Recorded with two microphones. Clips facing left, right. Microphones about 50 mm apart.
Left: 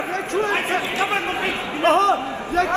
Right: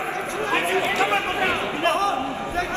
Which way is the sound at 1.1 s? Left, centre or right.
Left.